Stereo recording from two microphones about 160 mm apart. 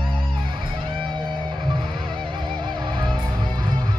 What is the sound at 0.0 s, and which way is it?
Music, 30° right (ahead or behind).